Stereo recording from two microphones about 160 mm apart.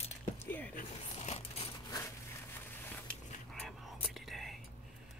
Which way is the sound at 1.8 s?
20° left (ahead or behind).